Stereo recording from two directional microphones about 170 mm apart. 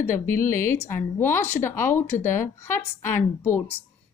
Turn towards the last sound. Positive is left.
turn(degrees=15)  # may be behind; listen again after turning